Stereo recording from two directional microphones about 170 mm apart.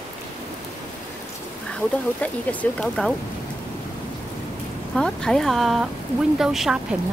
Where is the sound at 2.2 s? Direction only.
10° left (ahead or behind).